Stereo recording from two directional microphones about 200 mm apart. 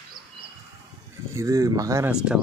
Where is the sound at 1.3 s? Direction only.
15° right (ahead or behind).